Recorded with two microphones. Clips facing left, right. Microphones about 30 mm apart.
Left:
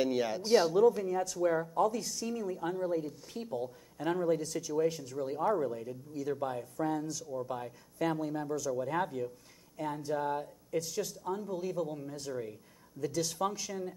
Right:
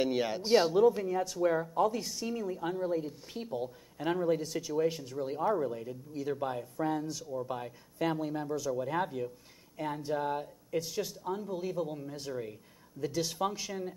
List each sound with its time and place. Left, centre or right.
0.0 s speech: right